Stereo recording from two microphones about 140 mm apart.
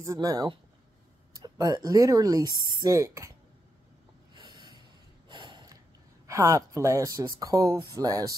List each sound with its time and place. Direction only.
0.0 s speech: 25° right (ahead or behind)
4.3 s snort: 30° right (ahead or behind)
5.3 s a sound: 30° right (ahead or behind)
6.2 s speech: 20° right (ahead or behind)